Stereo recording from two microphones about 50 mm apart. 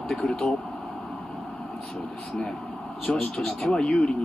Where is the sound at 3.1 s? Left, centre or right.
Centre.